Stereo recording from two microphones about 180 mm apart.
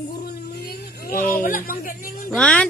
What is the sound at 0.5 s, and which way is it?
Vehicle, 60° left (ahead or behind).